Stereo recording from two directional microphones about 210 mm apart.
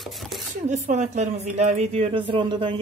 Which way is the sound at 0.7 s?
35° right (ahead or behind).